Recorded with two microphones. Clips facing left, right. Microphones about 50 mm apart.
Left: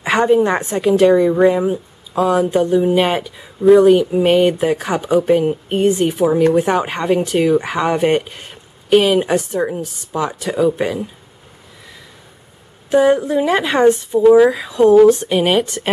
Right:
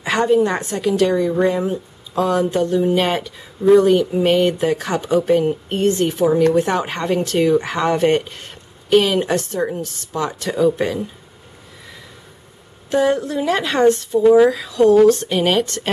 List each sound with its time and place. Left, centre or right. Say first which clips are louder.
0.0 s a woman's voice: left 2 dB; left
12.9 s speech: left 4 dB; centre